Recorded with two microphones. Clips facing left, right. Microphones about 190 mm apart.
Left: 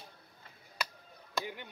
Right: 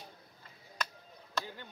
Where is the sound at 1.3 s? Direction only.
15° left (ahead or behind).